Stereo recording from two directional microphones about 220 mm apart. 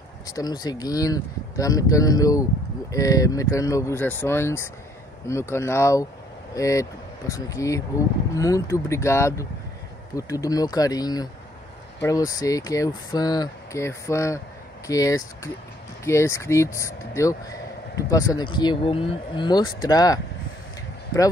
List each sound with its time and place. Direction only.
0.3 s speech: 15° left (ahead or behind)